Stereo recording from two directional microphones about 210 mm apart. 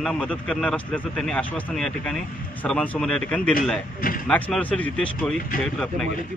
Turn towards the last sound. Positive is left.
turn(degrees=5)  # may be behind; listen again after turning